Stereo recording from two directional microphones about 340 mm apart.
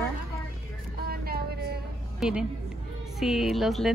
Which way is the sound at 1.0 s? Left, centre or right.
Right.